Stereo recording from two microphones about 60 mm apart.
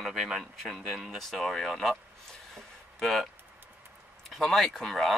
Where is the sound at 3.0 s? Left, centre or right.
Centre.